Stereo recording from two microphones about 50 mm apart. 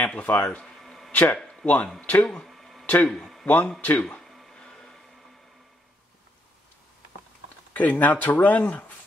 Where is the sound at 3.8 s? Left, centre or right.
Left.